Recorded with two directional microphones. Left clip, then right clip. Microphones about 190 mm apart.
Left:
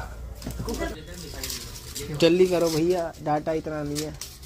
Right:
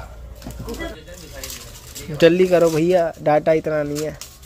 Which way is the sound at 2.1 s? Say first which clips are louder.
Right 6 dB; 50° right (ahead or behind).